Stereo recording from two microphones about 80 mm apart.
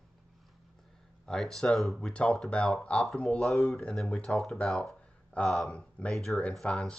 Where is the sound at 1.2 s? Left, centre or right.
Centre.